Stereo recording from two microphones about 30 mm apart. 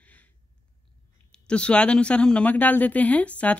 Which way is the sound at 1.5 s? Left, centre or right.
Left.